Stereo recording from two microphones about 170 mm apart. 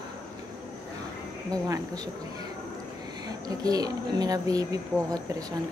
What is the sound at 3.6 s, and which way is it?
Speech, 20° right (ahead or behind).